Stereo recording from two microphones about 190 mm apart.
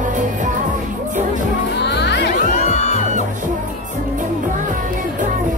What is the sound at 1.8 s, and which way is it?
Music, 65° left (ahead or behind).